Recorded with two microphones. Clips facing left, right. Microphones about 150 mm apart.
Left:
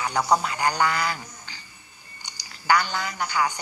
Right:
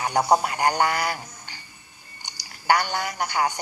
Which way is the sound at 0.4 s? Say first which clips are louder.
Right 2 dB; 50° right (ahead or behind).